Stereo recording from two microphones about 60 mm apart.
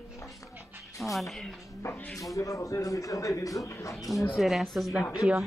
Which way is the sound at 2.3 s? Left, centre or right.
Left.